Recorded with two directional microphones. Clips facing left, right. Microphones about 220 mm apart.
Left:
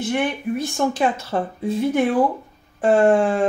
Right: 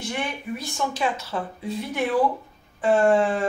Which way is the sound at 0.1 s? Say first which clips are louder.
Left 8 dB; 50° left (ahead or behind).